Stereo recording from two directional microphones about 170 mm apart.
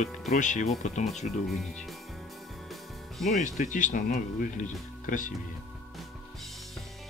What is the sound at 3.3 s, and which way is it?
Speech, 50° left (ahead or behind).